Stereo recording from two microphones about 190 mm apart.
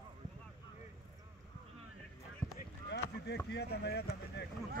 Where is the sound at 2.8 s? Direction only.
60° left (ahead or behind).